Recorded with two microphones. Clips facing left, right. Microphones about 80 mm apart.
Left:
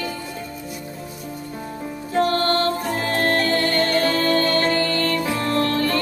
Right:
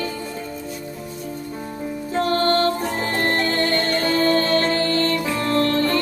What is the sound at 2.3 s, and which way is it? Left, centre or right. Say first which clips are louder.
Music: right 2 dB; right.